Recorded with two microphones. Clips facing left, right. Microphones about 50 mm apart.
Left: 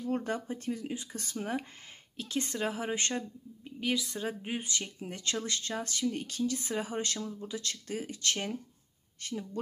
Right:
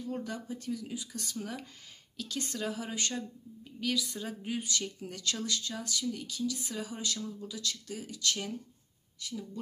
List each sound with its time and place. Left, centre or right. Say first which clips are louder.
0.0 s a woman's voice: left 5 dB; left